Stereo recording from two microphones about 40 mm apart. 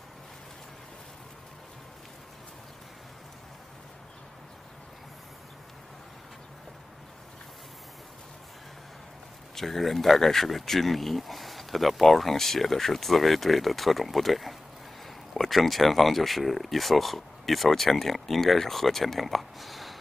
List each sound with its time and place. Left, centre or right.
9.6 s speech: centre